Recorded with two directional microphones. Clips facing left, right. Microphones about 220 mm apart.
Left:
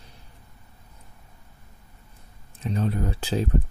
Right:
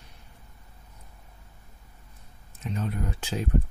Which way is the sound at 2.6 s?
35° left (ahead or behind).